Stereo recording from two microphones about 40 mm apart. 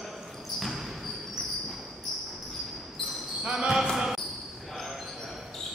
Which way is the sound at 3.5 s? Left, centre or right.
Right.